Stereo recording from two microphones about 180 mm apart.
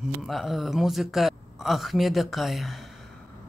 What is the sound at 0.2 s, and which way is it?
Speech, centre (ahead or behind).